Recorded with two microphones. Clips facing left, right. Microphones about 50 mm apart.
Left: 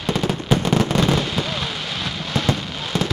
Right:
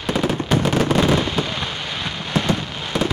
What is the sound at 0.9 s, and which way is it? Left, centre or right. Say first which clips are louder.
Fireworks: right 2 dB; centre.